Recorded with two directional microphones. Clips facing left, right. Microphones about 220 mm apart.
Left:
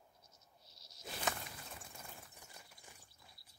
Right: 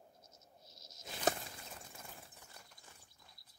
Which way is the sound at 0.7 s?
45° right (ahead or behind).